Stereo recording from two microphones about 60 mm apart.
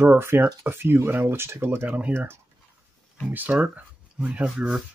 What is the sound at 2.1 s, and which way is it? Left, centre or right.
Speech, right.